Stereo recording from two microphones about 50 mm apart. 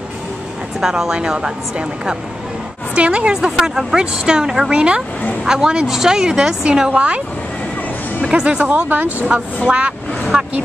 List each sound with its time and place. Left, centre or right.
0.7 s a woman's voice: centre
2.9 s a woman's voice: right
3.5 s a woman's voice: centre
8.3 s a woman's voice: right